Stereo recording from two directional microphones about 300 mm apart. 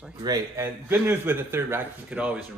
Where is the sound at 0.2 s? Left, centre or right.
Centre.